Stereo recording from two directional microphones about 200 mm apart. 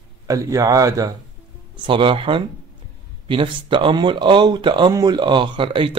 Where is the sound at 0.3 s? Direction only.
15° right (ahead or behind).